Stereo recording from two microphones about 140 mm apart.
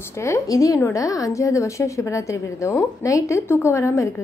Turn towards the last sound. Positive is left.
turn(degrees=20)  # may be behind; listen again after turning